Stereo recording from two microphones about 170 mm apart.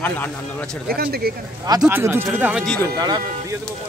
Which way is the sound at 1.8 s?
10° right (ahead or behind).